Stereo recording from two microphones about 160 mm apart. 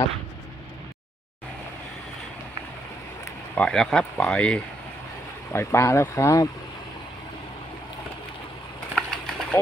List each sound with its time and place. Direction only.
3.5 s speech: 5° left (ahead or behind)
8.9 s pigeon: 5° left (ahead or behind)